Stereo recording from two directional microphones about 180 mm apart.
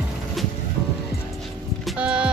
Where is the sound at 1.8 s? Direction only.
5° right (ahead or behind).